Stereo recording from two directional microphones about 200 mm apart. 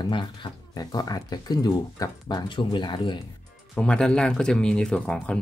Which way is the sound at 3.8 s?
5° left (ahead or behind).